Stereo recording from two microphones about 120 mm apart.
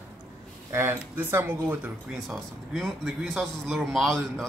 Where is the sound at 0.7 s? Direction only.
20° right (ahead or behind).